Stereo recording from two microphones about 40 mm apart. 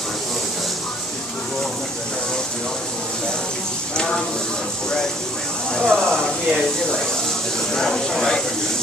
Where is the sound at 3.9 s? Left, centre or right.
Centre.